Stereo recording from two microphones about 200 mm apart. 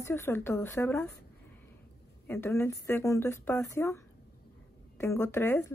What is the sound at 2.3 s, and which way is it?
Speech, 10° left (ahead or behind).